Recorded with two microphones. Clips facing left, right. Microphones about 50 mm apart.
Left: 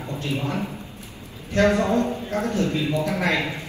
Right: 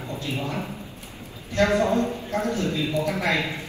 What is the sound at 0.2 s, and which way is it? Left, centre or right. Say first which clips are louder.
A man's voice: left 4 dB; left.